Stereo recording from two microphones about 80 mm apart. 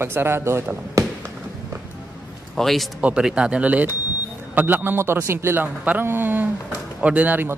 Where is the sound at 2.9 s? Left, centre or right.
Centre.